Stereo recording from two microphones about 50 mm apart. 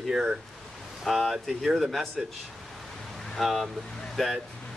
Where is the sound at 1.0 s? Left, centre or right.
Centre.